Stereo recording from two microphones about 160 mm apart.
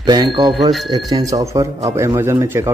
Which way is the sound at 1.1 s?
25° right (ahead or behind).